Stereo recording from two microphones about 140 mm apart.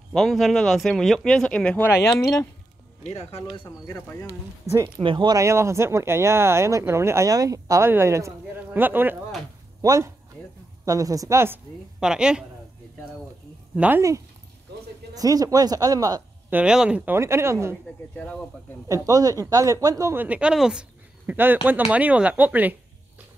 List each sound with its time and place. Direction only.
0.1 s speech: centre (ahead or behind); by 2.1 s 15° left (ahead or behind)
3.1 s speech: 50° left (ahead or behind)
3.6 s speech: 20° left (ahead or behind)
5.0 s speech: 35° right (ahead or behind)
5.4 s speech: 20° right (ahead or behind)
12.0 s speech: 5° right (ahead or behind)
13.7 s speech: 10° right (ahead or behind)
15.1 s speech: 25° right (ahead or behind)
16.4 s speech: 10° right (ahead or behind)
18.1 s speech: 10° left (ahead or behind)
18.9 s speech: 25° right (ahead or behind)